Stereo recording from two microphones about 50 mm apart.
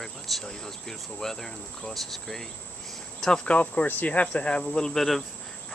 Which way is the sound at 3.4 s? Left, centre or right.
Left.